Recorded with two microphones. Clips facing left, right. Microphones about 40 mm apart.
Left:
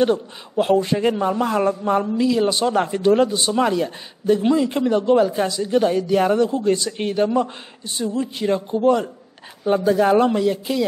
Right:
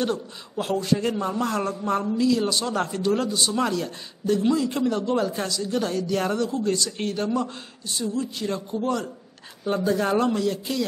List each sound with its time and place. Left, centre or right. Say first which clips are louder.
0.0 s speech: left 8 dB; left